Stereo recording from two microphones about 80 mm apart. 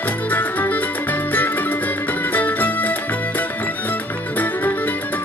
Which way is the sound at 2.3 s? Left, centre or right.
Left.